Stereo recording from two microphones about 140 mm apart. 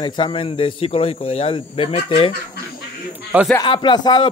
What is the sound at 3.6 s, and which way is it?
Speech, 35° left (ahead or behind).